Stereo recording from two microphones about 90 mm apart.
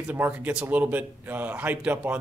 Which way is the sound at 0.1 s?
20° right (ahead or behind).